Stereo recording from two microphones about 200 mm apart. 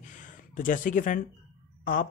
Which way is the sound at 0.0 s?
40° left (ahead or behind).